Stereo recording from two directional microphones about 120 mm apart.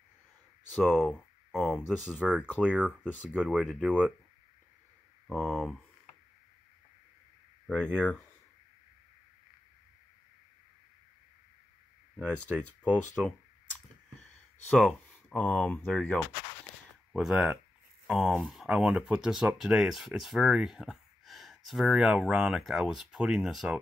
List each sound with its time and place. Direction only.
0.8 s speech: centre (ahead or behind)
3.0 s speech: 15° left (ahead or behind)
3.3 s speech: 5° right (ahead or behind)
5.2 s speech: centre (ahead or behind)
7.6 s speech: 10° left (ahead or behind)
12.5 s speech: 10° left (ahead or behind)
14.8 s speech: 5° left (ahead or behind)